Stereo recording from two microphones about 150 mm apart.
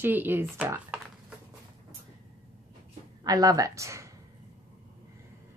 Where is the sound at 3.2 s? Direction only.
25° right (ahead or behind).